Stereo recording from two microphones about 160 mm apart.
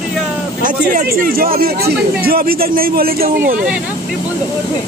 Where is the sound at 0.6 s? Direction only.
55° right (ahead or behind).